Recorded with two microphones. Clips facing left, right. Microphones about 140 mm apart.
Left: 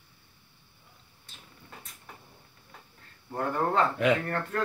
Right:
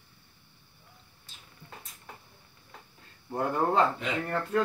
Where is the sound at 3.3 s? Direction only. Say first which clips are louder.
Right 1 dB; 15° right (ahead or behind).